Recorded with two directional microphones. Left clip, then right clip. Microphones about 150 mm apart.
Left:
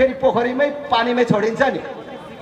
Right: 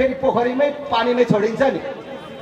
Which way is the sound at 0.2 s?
30° left (ahead or behind).